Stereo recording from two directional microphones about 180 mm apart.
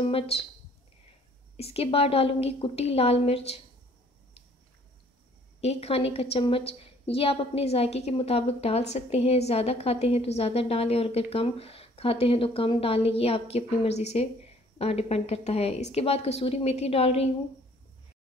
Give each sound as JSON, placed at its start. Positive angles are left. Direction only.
{"t": 0.0, "sound": "a woman's voice", "side_deg": 30}
{"t": 1.6, "sound": "a woman's voice", "side_deg": 30}
{"t": 5.6, "sound": "a woman's voice", "side_deg": 35}